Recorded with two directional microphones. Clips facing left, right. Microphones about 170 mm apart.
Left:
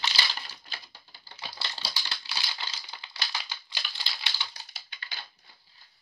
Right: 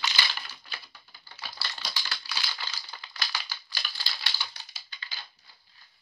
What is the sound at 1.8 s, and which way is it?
Crumpling, 25° left (ahead or behind).